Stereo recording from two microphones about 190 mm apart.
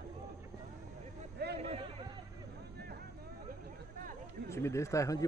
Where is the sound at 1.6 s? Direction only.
30° right (ahead or behind).